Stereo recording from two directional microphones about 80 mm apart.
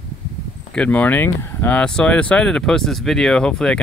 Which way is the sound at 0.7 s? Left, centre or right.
Centre.